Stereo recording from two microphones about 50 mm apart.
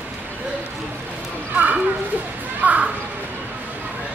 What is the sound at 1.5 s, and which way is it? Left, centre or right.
Children playing, right.